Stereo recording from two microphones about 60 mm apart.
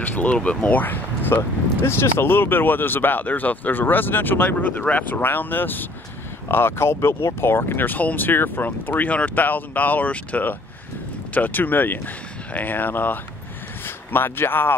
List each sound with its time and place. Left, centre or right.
0.0 s speech: left
1.8 s speech: left